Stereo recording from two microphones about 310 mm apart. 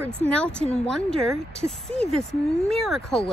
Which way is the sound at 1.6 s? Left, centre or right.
Centre.